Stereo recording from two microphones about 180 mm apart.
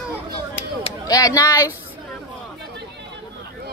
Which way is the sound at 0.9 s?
20° left (ahead or behind).